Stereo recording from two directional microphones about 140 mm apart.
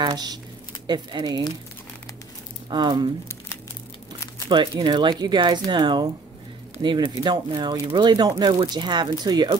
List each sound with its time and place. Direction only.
0.0 s speech: 30° right (ahead or behind)
2.7 s speech: 30° right (ahead or behind)
4.5 s speech: 35° right (ahead or behind)